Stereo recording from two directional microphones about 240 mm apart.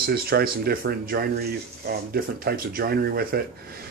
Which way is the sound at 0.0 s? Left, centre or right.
Right.